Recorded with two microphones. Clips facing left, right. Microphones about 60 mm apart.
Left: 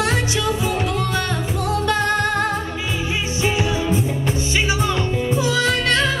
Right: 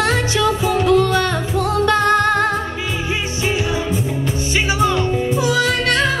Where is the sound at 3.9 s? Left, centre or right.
Left.